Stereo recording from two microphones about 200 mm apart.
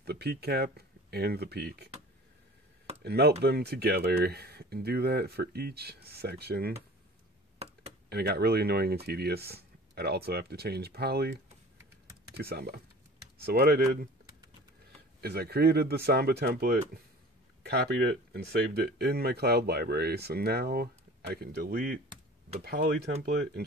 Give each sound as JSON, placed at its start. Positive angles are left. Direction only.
{"t": 0.0, "sound": "speech", "side_deg": -55}
{"t": 3.0, "sound": "speech", "side_deg": -55}
{"t": 7.5, "sound": "computer keyboard", "side_deg": -30}
{"t": 8.1, "sound": "speech", "side_deg": -55}
{"t": 12.4, "sound": "speech", "side_deg": -50}
{"t": 15.1, "sound": "speech", "side_deg": -50}
{"t": 23.2, "sound": "speech", "side_deg": -55}